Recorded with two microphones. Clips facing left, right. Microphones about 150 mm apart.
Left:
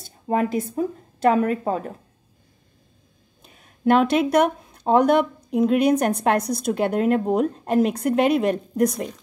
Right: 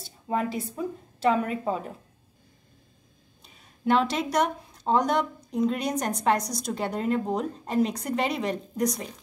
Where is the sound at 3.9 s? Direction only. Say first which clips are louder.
Left 6 dB; 55° left (ahead or behind).